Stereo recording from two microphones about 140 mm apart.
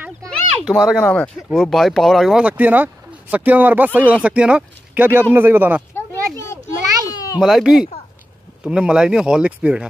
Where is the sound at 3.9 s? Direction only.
10° left (ahead or behind).